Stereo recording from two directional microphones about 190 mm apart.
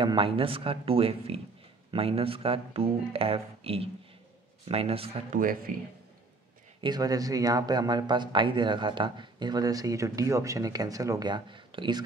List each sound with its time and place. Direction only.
0.0 s speech: 25° right (ahead or behind)
6.8 s speech: 20° right (ahead or behind)